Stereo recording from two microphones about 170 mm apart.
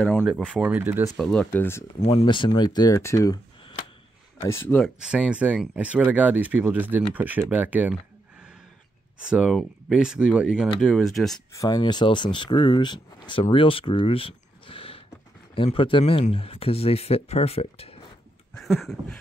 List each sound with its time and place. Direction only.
0.5 s speech: 10° right (ahead or behind)
1.1 s speech: 5° left (ahead or behind)
2.0 s speech: 35° left (ahead or behind); by 4.8 s 15° left (ahead or behind)
4.8 s speech: 5° right (ahead or behind)
7.5 s a sound: 10° right (ahead or behind)
9.3 s speech: centre (ahead or behind)
11.5 s speech: 20° left (ahead or behind)
18.5 s a sound: centre (ahead or behind)